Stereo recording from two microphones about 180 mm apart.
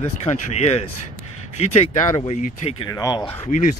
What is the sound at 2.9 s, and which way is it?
Speech, 20° left (ahead or behind).